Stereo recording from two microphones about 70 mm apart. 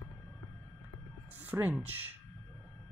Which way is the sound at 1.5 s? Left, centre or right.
Right.